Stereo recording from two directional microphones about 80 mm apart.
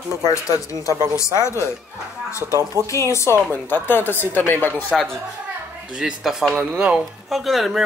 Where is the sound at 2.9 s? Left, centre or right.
Left.